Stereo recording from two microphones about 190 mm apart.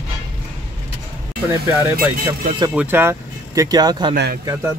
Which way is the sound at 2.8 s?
10° right (ahead or behind).